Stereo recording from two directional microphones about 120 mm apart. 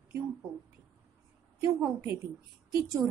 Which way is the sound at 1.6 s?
25° right (ahead or behind).